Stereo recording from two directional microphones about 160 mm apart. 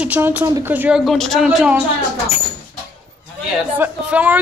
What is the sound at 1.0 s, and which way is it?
Speech, centre (ahead or behind).